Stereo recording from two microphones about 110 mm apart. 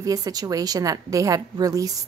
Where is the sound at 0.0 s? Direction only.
35° right (ahead or behind).